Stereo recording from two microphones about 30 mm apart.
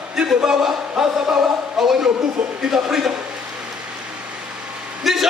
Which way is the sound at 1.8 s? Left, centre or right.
Centre.